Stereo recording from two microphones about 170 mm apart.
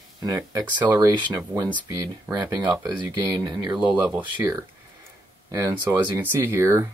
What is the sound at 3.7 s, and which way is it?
Speech, 10° right (ahead or behind).